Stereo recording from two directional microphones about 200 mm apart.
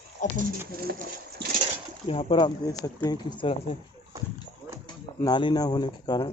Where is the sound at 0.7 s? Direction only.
50° right (ahead or behind).